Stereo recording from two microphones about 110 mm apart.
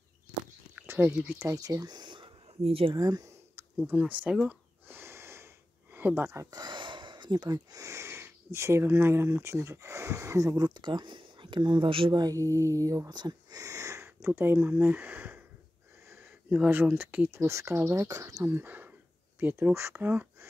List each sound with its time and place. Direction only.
0.7 s speech: 15° right (ahead or behind)
1.4 s speech: 30° right (ahead or behind); by 3.0 s 55° right (ahead or behind)
3.0 s speech: 30° right (ahead or behind); by 4.4 s 15° right (ahead or behind)
4.5 s a sound: 20° right (ahead or behind)
5.9 s speech: 20° right (ahead or behind)
6.6 s speech: 45° right (ahead or behind)
12.2 s speech: 30° right (ahead or behind); by 15.4 s 15° right (ahead or behind)
16.1 s a sound: 20° right (ahead or behind)
16.5 s speech: 10° right (ahead or behind)
18.0 s speech: 35° right (ahead or behind)
18.4 s speech: 20° right (ahead or behind)